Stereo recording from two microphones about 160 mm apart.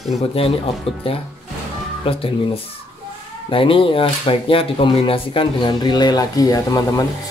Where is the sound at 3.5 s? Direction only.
35° left (ahead or behind).